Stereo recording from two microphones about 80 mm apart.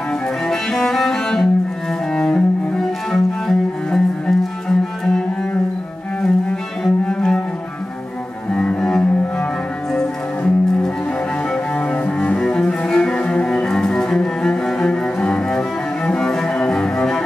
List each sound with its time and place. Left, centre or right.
0.5 s cello: centre
6.8 s cello: centre
8.5 s cello: centre